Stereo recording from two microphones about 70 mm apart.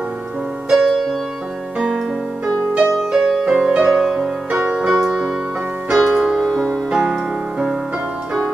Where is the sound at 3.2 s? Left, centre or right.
Centre.